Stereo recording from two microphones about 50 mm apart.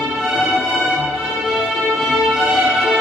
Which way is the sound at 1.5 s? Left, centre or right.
Centre.